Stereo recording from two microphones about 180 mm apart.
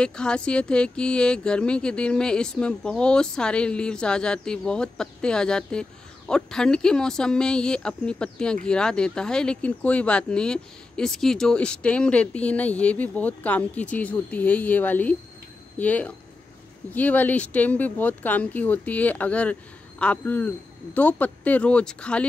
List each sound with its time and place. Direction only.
0.0 s speech: 5° left (ahead or behind)